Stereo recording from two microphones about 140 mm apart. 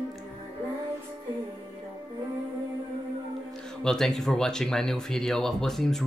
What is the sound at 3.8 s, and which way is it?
Speech, 5° left (ahead or behind).